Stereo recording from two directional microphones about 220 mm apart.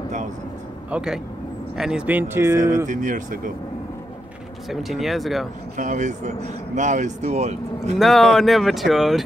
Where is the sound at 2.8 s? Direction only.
35° right (ahead or behind).